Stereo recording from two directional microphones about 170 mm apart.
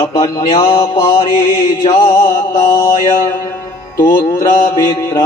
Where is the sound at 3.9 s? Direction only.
15° left (ahead or behind).